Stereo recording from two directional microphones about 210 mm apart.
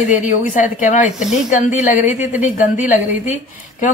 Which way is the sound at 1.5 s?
35° left (ahead or behind).